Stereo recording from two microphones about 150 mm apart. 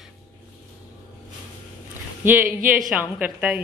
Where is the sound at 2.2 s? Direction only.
10° right (ahead or behind).